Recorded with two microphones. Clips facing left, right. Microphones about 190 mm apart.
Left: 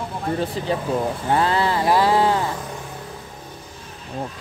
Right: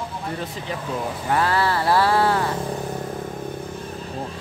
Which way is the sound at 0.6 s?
35° left (ahead or behind).